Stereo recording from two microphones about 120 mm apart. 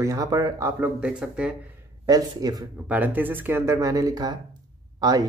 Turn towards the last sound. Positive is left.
turn(degrees=-30)  # may be behind; listen again after turning